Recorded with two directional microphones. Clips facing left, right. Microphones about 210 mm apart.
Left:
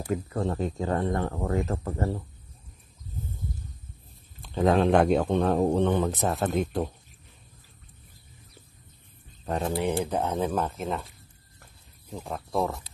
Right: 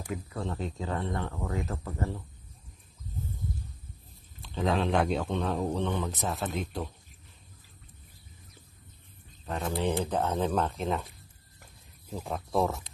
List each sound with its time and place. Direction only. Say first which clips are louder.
0.0 s speech: left 7 dB; 45° left (ahead or behind)
4.4 s speech: left 6 dB; 50° left (ahead or behind)
10.0 s speech: left 1 dB; 10° left (ahead or behind)
12.1 s speech: even; centre (ahead or behind)